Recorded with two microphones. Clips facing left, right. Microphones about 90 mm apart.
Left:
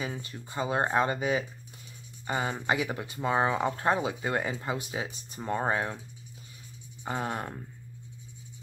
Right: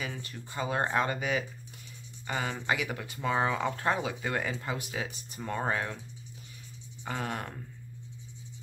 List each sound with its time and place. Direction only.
0.0 s speech: 25° left (ahead or behind)
7.1 s speech: 25° left (ahead or behind)